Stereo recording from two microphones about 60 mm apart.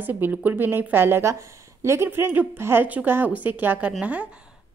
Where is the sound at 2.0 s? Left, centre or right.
Right.